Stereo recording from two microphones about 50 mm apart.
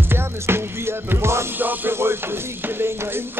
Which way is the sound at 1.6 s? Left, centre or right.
Right.